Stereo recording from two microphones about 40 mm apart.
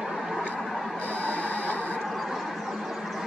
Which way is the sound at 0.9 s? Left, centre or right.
Left.